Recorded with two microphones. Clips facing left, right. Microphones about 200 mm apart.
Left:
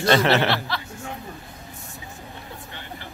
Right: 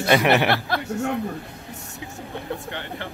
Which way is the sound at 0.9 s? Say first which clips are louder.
Right 11 dB; 70° right (ahead or behind).